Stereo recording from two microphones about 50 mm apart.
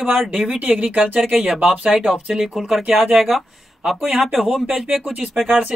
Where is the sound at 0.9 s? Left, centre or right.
Right.